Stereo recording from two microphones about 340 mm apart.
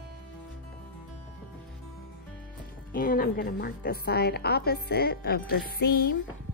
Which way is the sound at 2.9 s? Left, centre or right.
Left.